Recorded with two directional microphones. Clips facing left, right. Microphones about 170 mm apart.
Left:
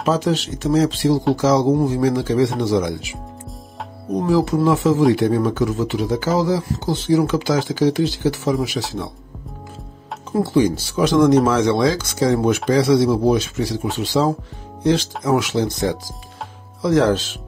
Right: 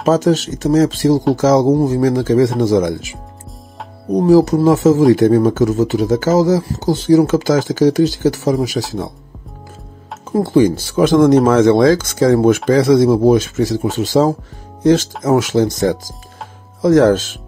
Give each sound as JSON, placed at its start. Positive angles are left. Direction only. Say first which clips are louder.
{"t": 0.0, "sound": "speech", "louder": "right 6 dB", "side_deg": -45}
{"t": 10.3, "sound": "speech", "louder": "right 4 dB", "side_deg": -50}